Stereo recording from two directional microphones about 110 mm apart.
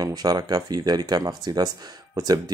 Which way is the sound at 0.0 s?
35° right (ahead or behind).